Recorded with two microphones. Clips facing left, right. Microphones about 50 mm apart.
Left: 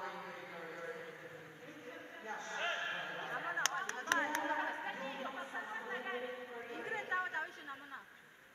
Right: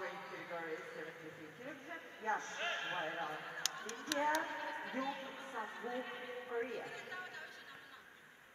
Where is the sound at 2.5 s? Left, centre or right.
Centre.